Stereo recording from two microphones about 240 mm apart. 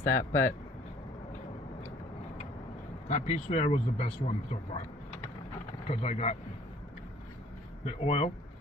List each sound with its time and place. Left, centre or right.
0.0 s speech: centre
3.1 s speech: left
5.9 s speech: left
7.8 s speech: left